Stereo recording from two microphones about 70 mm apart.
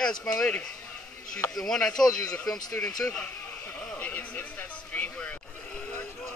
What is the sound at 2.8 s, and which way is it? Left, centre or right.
Speech, centre.